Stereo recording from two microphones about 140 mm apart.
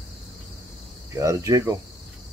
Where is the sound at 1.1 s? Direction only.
25° right (ahead or behind).